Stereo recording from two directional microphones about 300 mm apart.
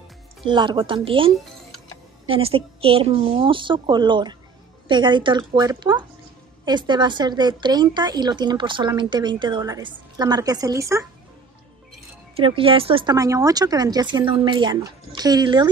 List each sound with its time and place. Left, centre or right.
0.5 s a woman's voice: centre
12.4 s a woman's voice: centre